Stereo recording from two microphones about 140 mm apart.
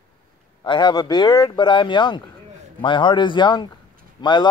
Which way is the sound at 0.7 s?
35° left (ahead or behind).